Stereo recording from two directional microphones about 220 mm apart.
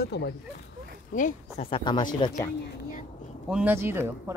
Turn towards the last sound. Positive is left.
turn(degrees=-10)  # may be behind; listen again after turning